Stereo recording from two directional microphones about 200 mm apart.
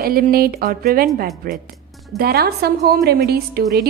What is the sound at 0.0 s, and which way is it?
A woman's voice, 50° right (ahead or behind).